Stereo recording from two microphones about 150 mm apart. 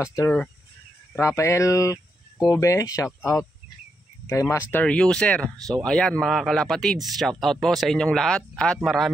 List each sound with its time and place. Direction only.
0.0 s speech: 20° left (ahead or behind); by 9.1 s centre (ahead or behind)